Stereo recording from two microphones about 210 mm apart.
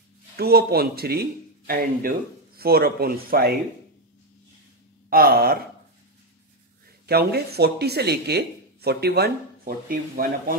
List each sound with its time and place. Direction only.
0.4 s speech: 50° right (ahead or behind)
5.1 s speech: 45° right (ahead or behind)
7.1 s speech: 50° right (ahead or behind)